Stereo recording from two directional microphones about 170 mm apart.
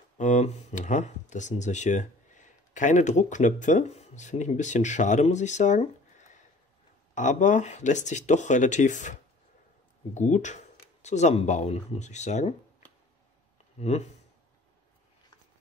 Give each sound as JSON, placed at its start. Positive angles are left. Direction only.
{"t": 0.2, "sound": "speech", "side_deg": 45}
{"t": 7.2, "sound": "speech", "side_deg": 45}
{"t": 13.7, "sound": "speech", "side_deg": 40}